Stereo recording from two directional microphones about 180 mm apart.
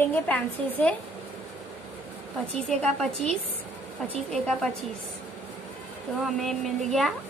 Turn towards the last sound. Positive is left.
turn(degrees=0)  # may be behind; listen again after turning